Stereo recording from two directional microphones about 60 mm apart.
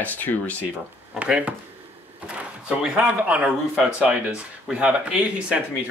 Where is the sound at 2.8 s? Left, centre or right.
Centre.